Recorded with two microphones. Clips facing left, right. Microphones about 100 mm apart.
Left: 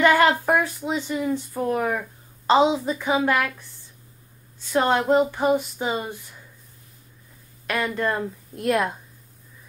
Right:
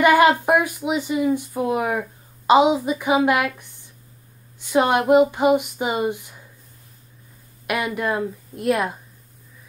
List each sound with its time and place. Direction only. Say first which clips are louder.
0.0 s speech: right 3 dB; 15° right (ahead or behind)
7.6 s speech: right 1 dB; 15° right (ahead or behind)